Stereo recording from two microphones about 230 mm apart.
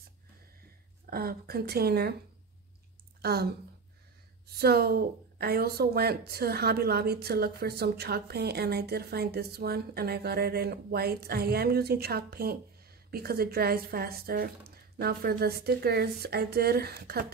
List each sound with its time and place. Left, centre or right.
1.1 s a woman's voice: right
3.2 s speech: right
4.6 s a woman's voice: right